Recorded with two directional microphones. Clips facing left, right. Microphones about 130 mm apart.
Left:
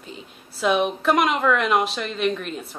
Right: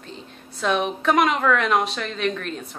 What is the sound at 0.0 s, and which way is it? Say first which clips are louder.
A woman's voice: right 1 dB; 5° left (ahead or behind).